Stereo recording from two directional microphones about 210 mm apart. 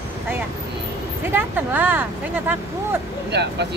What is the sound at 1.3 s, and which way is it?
Speech, 10° right (ahead or behind).